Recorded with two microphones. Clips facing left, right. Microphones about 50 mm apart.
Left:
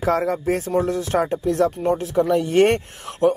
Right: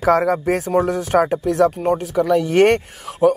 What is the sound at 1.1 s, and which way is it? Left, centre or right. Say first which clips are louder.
Speech: right 4 dB; centre.